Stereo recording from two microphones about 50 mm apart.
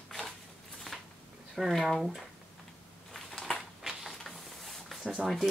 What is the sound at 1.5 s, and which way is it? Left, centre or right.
Speech, centre.